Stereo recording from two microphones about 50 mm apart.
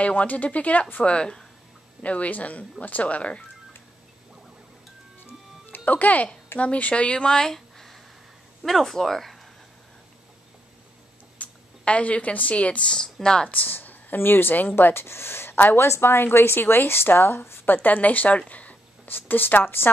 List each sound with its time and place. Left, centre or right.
0.0 s speech: left
1.0 s speech: centre
5.2 s music: left
6.6 s speech: left; by 9.4 s centre
11.3 s a woman's voice: left
12.9 s speech: centre
13.5 s speech: left
13.7 s a woman's voice: left
15.5 s a woman's voice: left
15.8 s speech: left
18.5 s a sound: left
19.0 s speech: left